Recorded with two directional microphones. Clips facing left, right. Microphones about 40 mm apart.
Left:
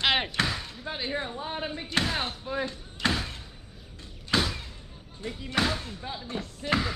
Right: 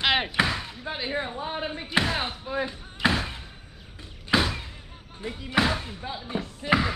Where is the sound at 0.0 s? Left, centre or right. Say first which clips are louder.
Right 2 dB; centre.